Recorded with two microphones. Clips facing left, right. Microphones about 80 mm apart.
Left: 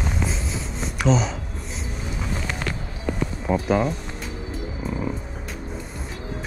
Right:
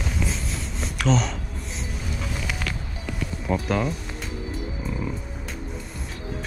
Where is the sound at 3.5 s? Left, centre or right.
Centre.